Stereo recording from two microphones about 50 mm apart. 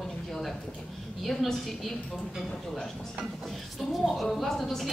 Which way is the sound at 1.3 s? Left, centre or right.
Centre.